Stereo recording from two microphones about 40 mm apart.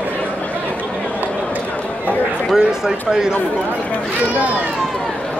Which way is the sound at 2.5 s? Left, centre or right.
Centre.